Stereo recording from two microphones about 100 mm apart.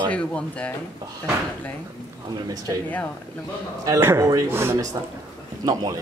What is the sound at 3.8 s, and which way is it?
Speech, 25° right (ahead or behind).